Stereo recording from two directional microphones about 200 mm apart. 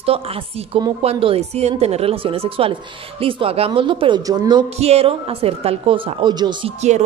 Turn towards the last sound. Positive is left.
turn(degrees=-35)  # may be behind; listen again after turning